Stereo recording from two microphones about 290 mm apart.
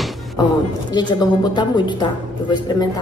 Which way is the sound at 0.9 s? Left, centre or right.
Centre.